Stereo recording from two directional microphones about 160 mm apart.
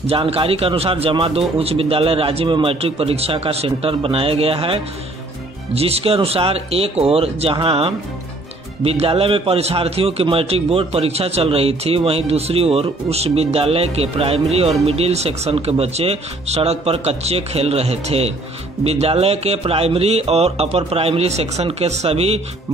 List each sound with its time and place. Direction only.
0.0 s a man's voice: 35° right (ahead or behind)